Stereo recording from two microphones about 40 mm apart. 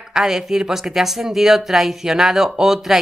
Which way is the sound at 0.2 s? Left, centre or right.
Centre.